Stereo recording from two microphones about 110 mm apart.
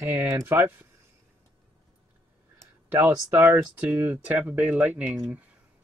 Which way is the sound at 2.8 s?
20° right (ahead or behind).